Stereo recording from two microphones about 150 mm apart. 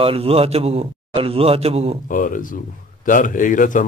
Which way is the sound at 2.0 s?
65° left (ahead or behind).